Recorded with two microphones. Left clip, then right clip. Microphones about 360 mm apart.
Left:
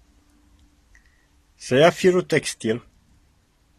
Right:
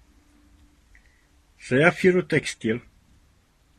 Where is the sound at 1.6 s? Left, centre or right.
Left.